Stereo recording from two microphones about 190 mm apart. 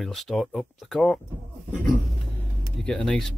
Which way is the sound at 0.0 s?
Centre (ahead or behind).